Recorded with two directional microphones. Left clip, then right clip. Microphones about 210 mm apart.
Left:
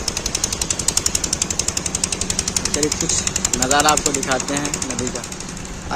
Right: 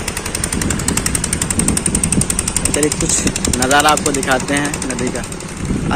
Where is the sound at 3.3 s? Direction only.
45° right (ahead or behind).